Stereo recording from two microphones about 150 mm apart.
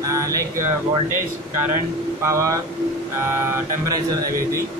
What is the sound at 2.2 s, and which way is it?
Mantra, 20° right (ahead or behind).